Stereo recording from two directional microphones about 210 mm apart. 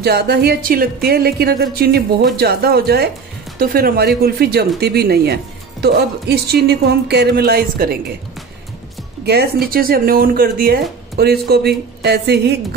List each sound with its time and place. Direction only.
0.0 s speech: 50° right (ahead or behind)
9.2 s speech: 50° right (ahead or behind)